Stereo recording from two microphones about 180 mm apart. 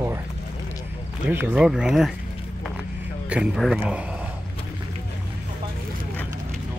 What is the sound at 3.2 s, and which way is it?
Speech, 5° right (ahead or behind).